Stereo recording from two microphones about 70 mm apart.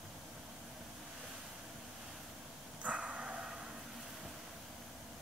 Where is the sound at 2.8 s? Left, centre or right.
Centre.